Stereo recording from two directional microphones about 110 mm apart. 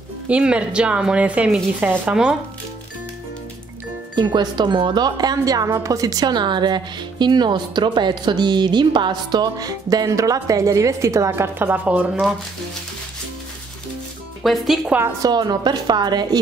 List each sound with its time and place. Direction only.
0.3 s speech: 10° right (ahead or behind)
4.1 s speech: 40° right (ahead or behind); by 12.1 s 15° right (ahead or behind)
14.4 s speech: centre (ahead or behind)
14.9 s a woman's voice: 20° right (ahead or behind)
15.2 s speech: 40° right (ahead or behind)